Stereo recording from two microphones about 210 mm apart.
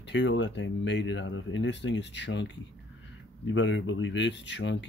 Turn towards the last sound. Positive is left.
turn(degrees=60)  # may be behind; listen again after turning